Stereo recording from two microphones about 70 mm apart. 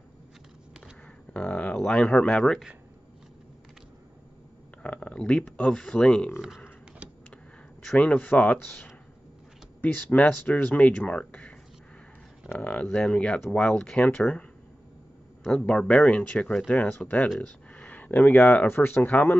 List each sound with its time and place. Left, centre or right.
1.3 s speech: centre
1.8 s speech: centre
4.8 s speech: centre
7.0 s a sound: centre
8.0 s speech: centre
10.1 s speech: centre
12.7 s speech: centre
15.4 s speech: centre